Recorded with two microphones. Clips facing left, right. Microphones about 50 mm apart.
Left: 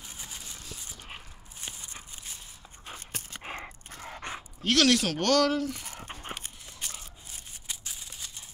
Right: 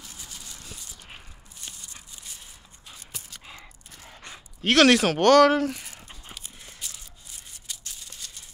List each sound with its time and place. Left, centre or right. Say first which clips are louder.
0.0 s a sound: even; left
1.6 s walk: left 2 dB; left
2.9 s dog: left 3 dB; left
4.6 s speech: right 6 dB; right
5.2 s speech: right 10 dB; right
5.5 s speech: right 6 dB; right
5.9 s dog: left 5 dB; left
7.6 s a sound: even; centre